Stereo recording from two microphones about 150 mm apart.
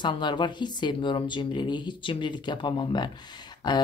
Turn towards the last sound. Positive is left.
turn(degrees=30)  # may be behind; listen again after turning